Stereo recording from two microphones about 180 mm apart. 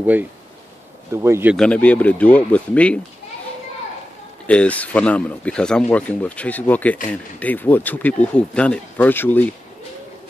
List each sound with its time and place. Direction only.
0.0 s speech: 10° right (ahead or behind)
1.6 s speech: 5° left (ahead or behind)
4.5 s speech: 5° left (ahead or behind)